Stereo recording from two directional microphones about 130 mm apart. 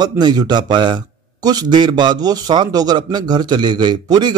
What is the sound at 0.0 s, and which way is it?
A man's voice, 30° right (ahead or behind).